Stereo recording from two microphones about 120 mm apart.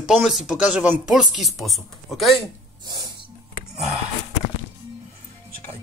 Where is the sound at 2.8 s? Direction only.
35° right (ahead or behind).